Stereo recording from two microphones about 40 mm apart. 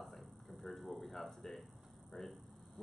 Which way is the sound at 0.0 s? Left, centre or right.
Centre.